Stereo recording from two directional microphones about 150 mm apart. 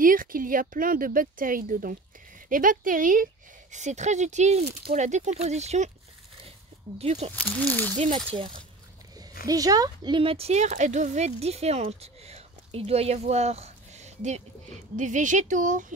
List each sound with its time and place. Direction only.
0.0 s speech: 65° right (ahead or behind)
3.7 s speech: 50° right (ahead or behind)
7.0 s speech: 40° right (ahead or behind)
7.3 s speech: 10° left (ahead or behind)
9.5 s speech: 25° right (ahead or behind); by 15.9 s 60° right (ahead or behind)